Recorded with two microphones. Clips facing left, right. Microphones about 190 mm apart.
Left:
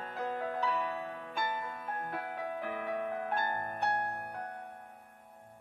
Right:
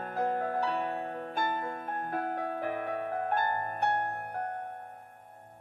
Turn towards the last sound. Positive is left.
turn(degrees=-55)  # may be behind; listen again after turning